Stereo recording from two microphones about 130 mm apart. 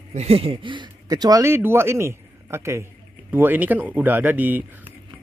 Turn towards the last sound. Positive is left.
turn(degrees=-15)  # may be behind; listen again after turning